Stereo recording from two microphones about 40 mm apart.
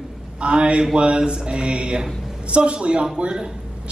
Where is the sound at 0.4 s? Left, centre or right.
Right.